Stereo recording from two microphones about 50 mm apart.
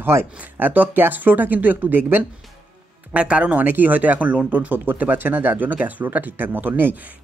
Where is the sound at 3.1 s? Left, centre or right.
Right.